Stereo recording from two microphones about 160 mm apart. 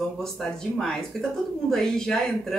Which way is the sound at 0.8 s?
5° left (ahead or behind).